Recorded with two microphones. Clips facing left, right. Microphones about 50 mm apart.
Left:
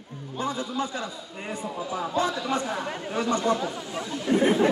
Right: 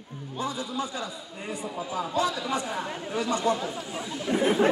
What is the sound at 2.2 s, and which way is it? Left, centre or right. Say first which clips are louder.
Speech: left 1 dB; left.